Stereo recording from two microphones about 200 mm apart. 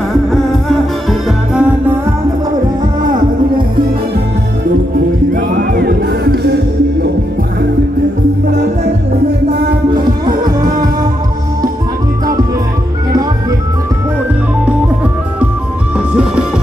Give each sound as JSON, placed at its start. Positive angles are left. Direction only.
{"t": 0.3, "sound": "music", "side_deg": 0}
{"t": 5.3, "sound": "music", "side_deg": -45}
{"t": 9.9, "sound": "music", "side_deg": -20}
{"t": 16.1, "sound": "music", "side_deg": -5}